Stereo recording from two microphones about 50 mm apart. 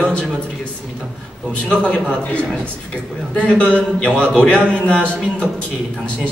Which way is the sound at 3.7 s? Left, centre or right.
Left.